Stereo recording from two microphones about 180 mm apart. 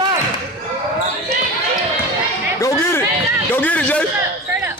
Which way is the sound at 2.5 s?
15° left (ahead or behind).